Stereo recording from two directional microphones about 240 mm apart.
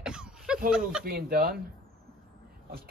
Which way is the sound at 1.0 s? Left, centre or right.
Right.